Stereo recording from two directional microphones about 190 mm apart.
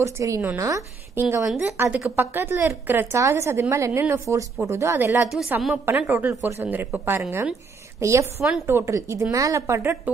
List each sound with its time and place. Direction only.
0.0 s a woman's voice: 15° right (ahead or behind)
8.4 s a woman's voice: centre (ahead or behind)
8.6 s a woman's voice: 15° right (ahead or behind)